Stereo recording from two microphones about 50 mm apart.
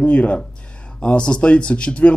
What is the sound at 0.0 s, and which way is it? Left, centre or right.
Speech, left.